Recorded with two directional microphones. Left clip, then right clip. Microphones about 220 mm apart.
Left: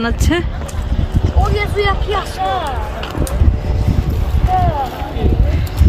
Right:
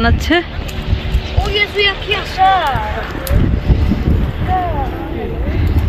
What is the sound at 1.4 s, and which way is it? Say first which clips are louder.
Vehicle: right 3 dB; 30° left (ahead or behind).